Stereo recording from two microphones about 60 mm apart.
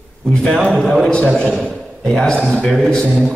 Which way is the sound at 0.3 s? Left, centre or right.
Centre.